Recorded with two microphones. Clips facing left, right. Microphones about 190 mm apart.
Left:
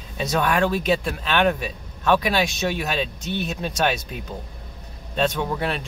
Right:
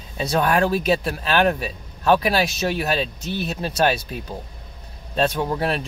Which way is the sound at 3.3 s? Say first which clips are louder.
Right 1 dB; 5° right (ahead or behind).